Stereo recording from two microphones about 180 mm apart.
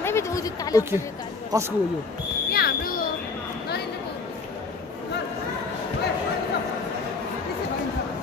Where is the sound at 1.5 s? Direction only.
15° right (ahead or behind).